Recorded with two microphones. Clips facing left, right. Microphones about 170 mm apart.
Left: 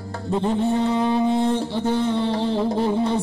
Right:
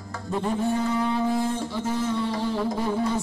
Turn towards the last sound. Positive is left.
turn(degrees=25)  # may be behind; listen again after turning